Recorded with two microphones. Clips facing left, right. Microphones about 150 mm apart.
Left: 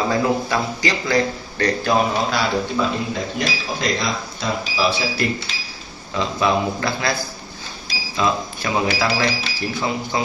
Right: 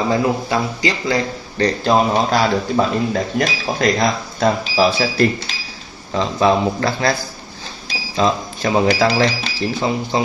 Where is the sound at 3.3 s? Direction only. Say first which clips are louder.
Right 5 dB; 55° right (ahead or behind).